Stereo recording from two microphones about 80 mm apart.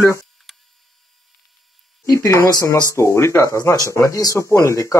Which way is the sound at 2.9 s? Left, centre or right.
Left.